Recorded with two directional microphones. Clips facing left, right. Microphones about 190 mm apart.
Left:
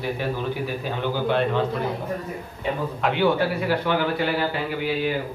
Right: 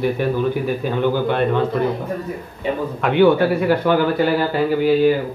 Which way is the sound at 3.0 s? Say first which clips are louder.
Right 7 dB; 55° right (ahead or behind).